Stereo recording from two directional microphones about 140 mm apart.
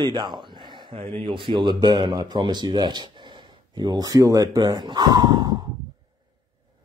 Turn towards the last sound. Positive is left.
turn(degrees=-25)  # may be behind; listen again after turning